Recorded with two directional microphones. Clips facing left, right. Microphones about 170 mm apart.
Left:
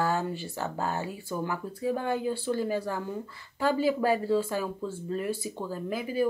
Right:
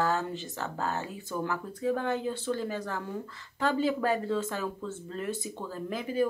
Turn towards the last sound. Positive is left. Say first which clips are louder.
# left 1 dB
turn(degrees=10)  # may be behind; listen again after turning